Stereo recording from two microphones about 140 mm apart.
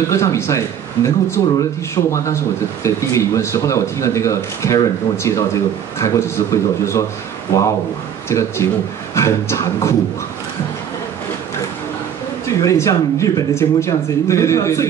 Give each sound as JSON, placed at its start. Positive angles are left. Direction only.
{"t": 0.1, "sound": "speech", "side_deg": 20}
{"t": 8.3, "sound": "speech", "side_deg": 20}
{"t": 12.6, "sound": "speech", "side_deg": 20}